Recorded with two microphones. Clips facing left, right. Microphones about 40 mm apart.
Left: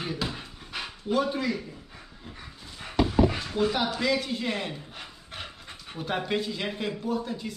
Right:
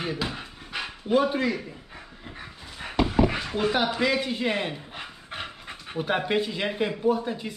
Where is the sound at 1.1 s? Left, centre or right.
Right.